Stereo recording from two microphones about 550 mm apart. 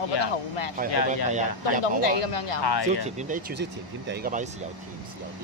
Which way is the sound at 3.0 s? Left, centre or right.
Centre.